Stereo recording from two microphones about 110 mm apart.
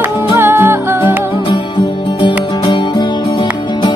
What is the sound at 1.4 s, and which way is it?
Music, 45° left (ahead or behind).